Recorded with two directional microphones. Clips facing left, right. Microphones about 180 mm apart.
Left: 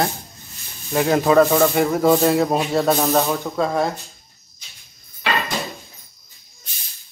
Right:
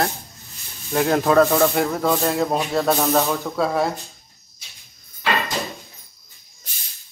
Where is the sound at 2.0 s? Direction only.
15° left (ahead or behind).